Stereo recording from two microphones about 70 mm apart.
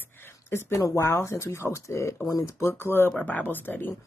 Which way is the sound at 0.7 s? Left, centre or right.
Left.